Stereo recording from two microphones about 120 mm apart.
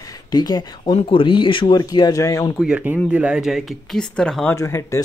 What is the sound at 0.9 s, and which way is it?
Speech, 45° left (ahead or behind).